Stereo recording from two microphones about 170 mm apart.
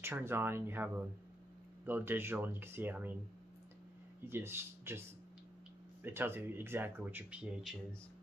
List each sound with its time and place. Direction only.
0.0 s speech: 15° right (ahead or behind)
4.3 s speech: 15° right (ahead or behind)
6.0 s speech: 15° right (ahead or behind)